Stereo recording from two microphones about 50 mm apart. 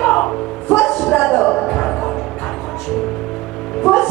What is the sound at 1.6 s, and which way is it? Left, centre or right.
Music, centre.